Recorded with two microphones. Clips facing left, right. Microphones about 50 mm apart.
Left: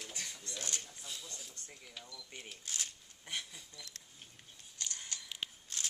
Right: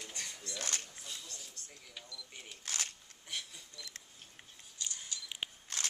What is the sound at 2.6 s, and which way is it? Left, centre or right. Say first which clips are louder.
Speech: right 4 dB; right.